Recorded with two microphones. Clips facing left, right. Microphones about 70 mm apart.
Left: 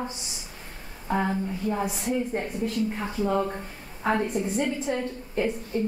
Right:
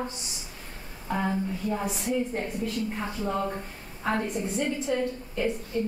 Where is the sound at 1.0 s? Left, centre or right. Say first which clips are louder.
Left 2 dB; centre.